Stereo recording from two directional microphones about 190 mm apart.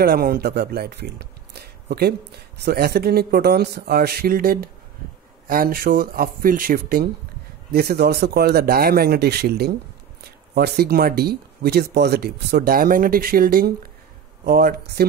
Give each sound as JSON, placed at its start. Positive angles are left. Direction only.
{"t": 0.0, "sound": "speech", "side_deg": -50}